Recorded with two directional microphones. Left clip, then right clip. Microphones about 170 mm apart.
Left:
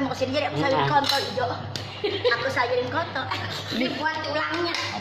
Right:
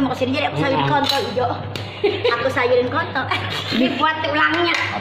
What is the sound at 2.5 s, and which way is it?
A woman's voice, 55° right (ahead or behind).